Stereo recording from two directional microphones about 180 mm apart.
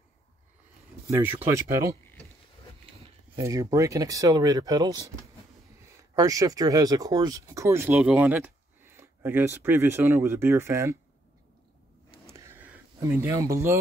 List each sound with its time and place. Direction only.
1.1 s speech: 15° right (ahead or behind)
3.3 s speech: 20° right (ahead or behind)
12.3 s a sound: 15° right (ahead or behind)